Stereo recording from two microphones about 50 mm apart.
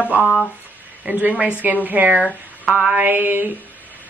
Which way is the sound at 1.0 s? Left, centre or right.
Right.